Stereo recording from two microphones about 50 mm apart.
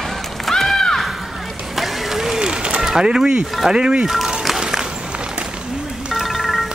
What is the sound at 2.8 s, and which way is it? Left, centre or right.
Speech, centre.